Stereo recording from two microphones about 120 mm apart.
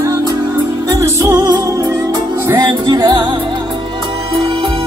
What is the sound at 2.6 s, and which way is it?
Music, 35° right (ahead or behind).